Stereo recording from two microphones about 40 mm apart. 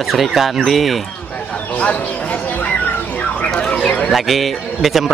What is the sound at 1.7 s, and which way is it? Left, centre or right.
Speech, left.